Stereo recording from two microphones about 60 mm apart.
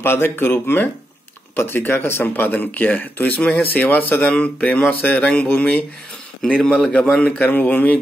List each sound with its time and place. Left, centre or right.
0.0 s a man's voice: left; by 7.0 s centre
7.3 s speech: left